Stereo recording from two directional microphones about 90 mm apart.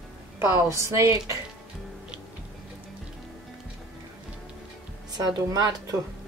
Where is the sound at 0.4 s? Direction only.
35° right (ahead or behind).